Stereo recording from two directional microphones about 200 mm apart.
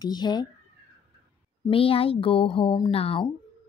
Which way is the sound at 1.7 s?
30° left (ahead or behind).